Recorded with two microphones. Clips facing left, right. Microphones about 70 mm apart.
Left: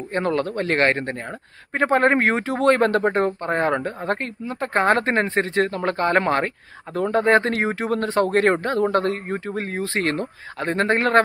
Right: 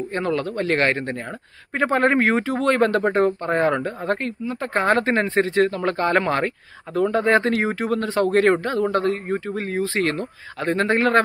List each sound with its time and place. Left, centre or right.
0.1 s speech: left
3.4 s speech: left
8.9 s a man's voice: left
9.3 s speech: left